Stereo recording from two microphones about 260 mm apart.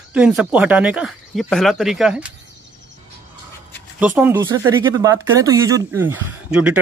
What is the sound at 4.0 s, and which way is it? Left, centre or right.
Speech, centre.